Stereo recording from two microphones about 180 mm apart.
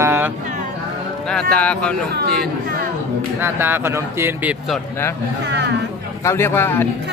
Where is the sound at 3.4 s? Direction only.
10° right (ahead or behind).